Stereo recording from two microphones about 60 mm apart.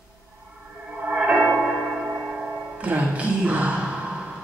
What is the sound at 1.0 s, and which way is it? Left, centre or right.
Music, centre.